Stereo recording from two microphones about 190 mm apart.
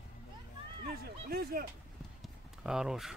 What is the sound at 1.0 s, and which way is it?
Speech, 50° right (ahead or behind).